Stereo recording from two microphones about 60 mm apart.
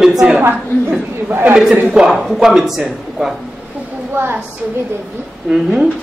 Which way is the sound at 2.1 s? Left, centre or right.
Centre.